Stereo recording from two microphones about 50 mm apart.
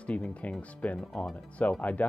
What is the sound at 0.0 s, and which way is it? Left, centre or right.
Speech, left.